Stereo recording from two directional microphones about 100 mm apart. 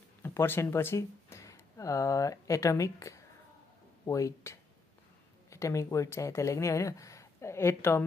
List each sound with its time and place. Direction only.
0.2 s speech: 25° left (ahead or behind)